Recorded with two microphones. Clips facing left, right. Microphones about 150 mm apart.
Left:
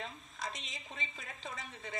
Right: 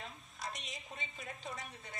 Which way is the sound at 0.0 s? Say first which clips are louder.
Left 3 dB; 90° left.